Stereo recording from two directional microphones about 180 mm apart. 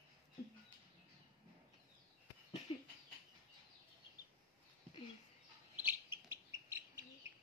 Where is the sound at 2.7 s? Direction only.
30° left (ahead or behind).